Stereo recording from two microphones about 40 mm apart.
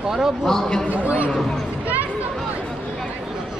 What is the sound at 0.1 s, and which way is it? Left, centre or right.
Speech, centre.